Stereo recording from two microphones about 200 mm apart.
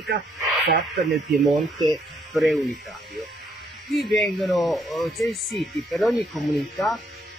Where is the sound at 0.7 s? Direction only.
50° right (ahead or behind).